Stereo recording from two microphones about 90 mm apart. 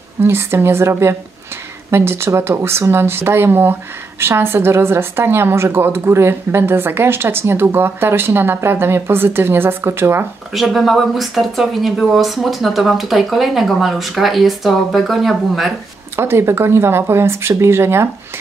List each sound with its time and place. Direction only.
0.2 s a woman's voice: 25° right (ahead or behind)
10.5 s speech: centre (ahead or behind)
16.2 s a woman's voice: 30° right (ahead or behind)